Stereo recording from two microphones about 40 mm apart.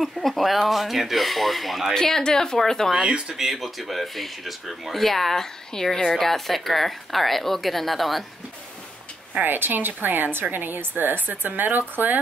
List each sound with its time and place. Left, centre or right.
0.0 s speech: centre
2.0 s a woman's voice: centre
2.9 s speech: centre
3.3 s speech: centre
9.5 s a woman's voice: right